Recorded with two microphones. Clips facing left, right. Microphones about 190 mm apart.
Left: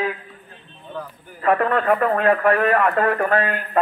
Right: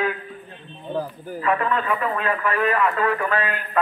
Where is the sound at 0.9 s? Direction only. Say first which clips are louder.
Right 6 dB; 35° right (ahead or behind).